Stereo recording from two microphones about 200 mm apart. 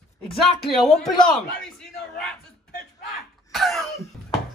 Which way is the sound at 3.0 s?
Centre (ahead or behind).